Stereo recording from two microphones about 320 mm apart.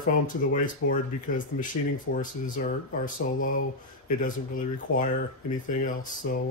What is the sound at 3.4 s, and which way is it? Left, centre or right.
Speech, left.